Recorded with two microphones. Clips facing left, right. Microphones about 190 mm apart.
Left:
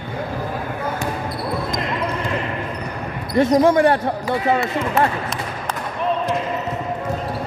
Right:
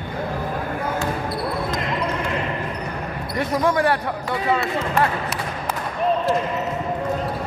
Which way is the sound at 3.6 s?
25° left (ahead or behind).